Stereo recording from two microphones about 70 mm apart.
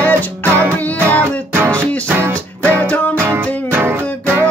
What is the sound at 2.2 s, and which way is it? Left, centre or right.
Music, right.